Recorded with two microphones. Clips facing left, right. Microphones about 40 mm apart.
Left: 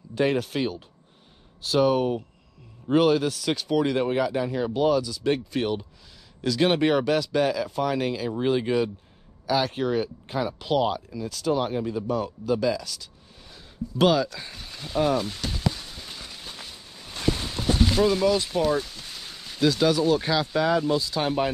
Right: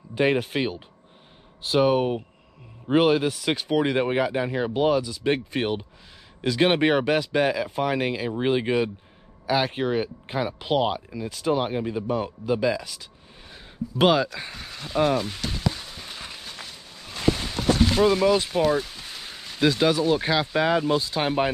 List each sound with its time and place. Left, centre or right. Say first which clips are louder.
0.1 s speech: right 2 dB; right
14.5 s speech: right 1 dB; centre
15.4 s a sound: right 1 dB; centre
17.9 s speech: right 1 dB; right